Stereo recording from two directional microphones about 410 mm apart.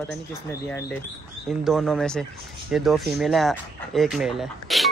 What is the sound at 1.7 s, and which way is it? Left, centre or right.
Speech, centre.